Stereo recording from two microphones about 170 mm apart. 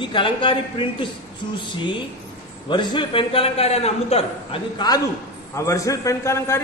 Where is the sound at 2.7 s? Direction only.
25° left (ahead or behind).